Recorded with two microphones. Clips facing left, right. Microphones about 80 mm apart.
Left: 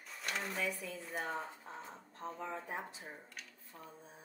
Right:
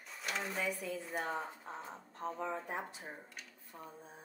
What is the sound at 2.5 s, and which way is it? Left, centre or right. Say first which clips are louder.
Speech: right 2 dB; centre.